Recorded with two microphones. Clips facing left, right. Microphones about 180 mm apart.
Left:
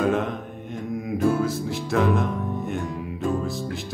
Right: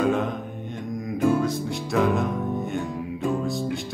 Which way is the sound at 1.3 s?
5° left (ahead or behind).